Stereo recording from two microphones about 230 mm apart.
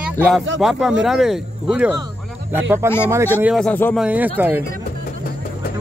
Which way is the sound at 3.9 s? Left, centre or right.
Centre.